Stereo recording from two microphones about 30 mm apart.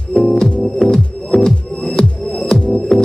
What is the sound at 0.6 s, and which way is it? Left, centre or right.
Music, centre.